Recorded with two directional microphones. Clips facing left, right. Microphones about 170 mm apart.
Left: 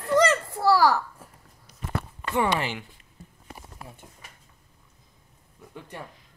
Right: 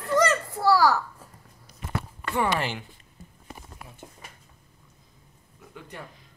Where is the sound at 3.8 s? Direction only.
30° left (ahead or behind).